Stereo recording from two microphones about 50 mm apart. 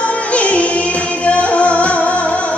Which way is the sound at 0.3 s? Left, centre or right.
Left.